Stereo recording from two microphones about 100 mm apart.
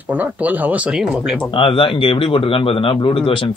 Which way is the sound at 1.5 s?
60° left (ahead or behind).